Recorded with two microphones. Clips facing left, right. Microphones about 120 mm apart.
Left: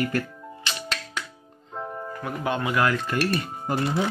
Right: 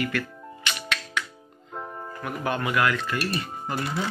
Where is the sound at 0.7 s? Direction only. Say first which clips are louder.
Right 1 dB; 35° left (ahead or behind).